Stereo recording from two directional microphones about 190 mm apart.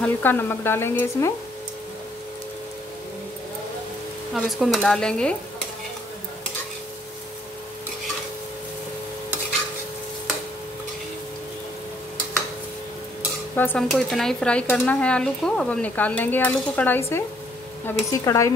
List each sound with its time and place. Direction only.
0.0 s speech: 10° left (ahead or behind)
4.3 s speech: centre (ahead or behind)
13.6 s speech: 10° left (ahead or behind)